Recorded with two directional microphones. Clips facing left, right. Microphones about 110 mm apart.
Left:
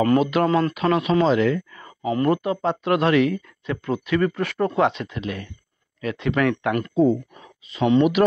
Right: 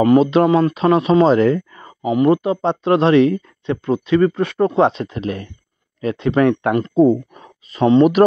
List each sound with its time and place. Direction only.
0.0 s speech: 25° right (ahead or behind)
0.7 s speech: 30° right (ahead or behind)
2.0 s speech: 15° right (ahead or behind)
7.0 s speech: 45° right (ahead or behind)